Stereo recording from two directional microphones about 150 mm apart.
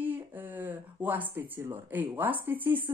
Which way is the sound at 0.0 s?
10° right (ahead or behind).